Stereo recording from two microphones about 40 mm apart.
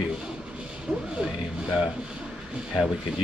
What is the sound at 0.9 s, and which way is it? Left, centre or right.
Speech, right.